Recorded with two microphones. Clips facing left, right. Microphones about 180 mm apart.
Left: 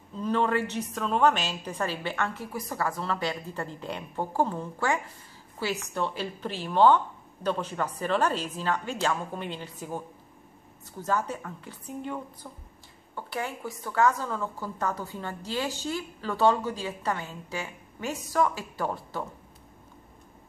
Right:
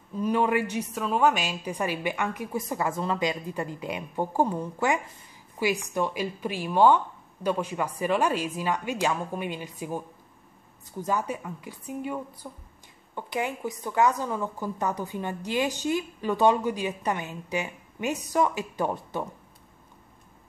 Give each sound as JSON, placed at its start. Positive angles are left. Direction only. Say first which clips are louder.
{"t": 0.1, "sound": "a woman's voice", "louder": "right 2 dB", "side_deg": -10}